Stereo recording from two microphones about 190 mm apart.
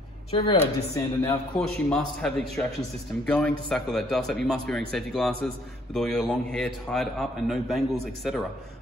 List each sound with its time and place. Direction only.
0.3 s speech: 25° left (ahead or behind)
0.6 s a man's voice: 15° left (ahead or behind)